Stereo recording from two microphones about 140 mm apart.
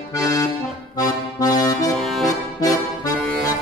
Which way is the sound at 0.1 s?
25° left (ahead or behind).